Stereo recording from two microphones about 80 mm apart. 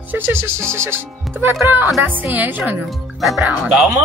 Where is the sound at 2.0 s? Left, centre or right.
Right.